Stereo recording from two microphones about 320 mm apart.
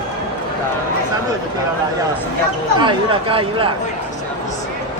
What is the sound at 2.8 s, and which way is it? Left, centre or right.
Speech, centre.